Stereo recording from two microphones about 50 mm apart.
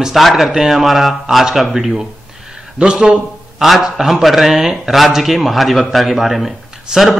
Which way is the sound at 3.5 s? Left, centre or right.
Centre.